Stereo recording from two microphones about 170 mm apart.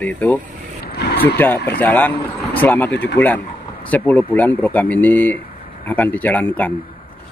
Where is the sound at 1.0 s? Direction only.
75° left (ahead or behind).